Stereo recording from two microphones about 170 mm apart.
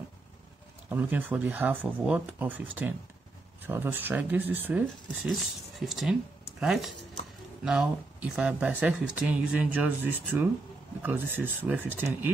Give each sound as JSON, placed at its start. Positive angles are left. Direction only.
{"t": 0.8, "sound": "speech", "side_deg": -10}